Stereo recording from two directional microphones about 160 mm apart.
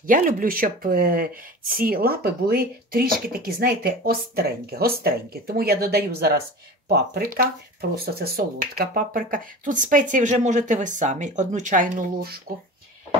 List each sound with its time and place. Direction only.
0.0 s speech: 60° right (ahead or behind)